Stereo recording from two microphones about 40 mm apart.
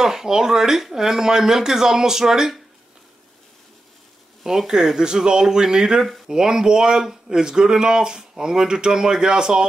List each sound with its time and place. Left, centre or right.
0.0 s speech: centre
4.4 s speech: centre